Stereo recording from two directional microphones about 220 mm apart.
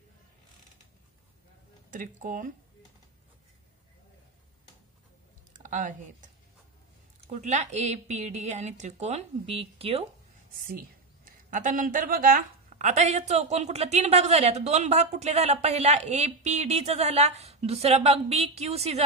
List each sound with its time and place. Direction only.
1.9 s a woman's voice: 35° right (ahead or behind)
5.5 s speech: 35° right (ahead or behind)
7.3 s a woman's voice: 35° right (ahead or behind)
10.5 s speech: 40° right (ahead or behind)